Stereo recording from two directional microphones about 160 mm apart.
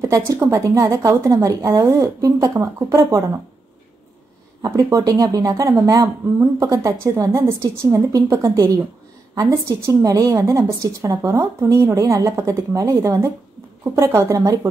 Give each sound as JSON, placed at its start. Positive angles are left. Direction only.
{"t": 0.0, "sound": "speech", "side_deg": -20}
{"t": 4.6, "sound": "speech", "side_deg": -20}